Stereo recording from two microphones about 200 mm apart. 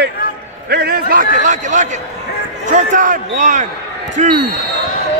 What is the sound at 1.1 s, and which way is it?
A man's voice, 40° right (ahead or behind).